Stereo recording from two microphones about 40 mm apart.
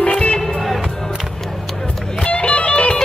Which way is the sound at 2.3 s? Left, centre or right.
Left.